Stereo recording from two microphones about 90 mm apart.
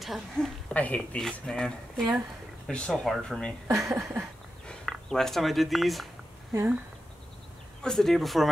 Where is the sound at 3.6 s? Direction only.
35° right (ahead or behind).